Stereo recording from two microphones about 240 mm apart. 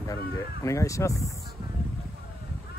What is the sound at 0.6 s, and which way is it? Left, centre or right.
Speech, centre.